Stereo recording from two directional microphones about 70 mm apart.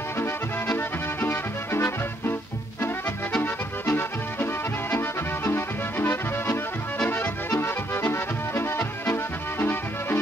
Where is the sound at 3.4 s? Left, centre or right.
Left.